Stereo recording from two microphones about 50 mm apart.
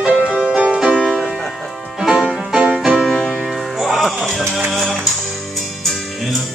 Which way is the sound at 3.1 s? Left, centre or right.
Centre.